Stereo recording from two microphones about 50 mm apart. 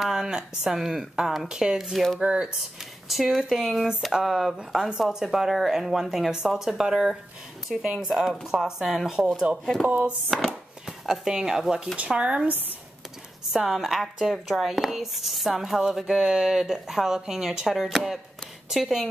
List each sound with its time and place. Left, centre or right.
0.0 s speech: centre
9.8 s speech: right
10.3 s chopping: centre
12.1 s speech: centre
13.5 s speech: centre